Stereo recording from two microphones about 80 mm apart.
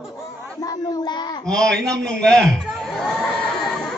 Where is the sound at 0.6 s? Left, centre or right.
Left.